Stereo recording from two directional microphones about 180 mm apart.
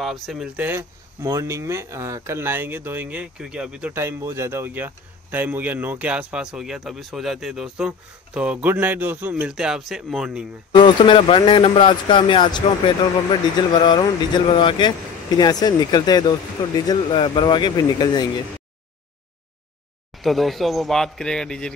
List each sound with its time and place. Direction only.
0.0 s speech: centre (ahead or behind)
10.7 s speech: 25° left (ahead or behind)
20.2 s speech: centre (ahead or behind)